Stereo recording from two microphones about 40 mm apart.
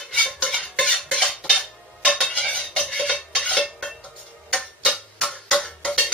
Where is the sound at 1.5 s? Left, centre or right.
Left.